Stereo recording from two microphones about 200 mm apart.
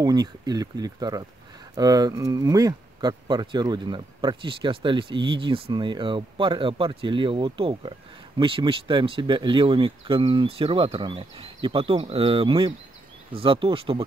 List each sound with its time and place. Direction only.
0.0 s speech: 20° right (ahead or behind)